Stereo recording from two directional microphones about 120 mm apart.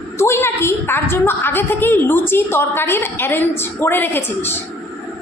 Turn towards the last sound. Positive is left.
turn(degrees=20)  # may be behind; listen again after turning